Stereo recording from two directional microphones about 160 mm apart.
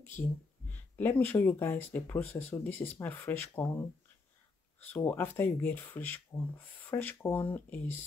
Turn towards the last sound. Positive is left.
turn(degrees=10)  # may be behind; listen again after turning